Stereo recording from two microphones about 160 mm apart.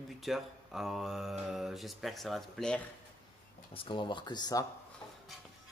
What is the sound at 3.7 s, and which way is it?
Speech, 30° left (ahead or behind).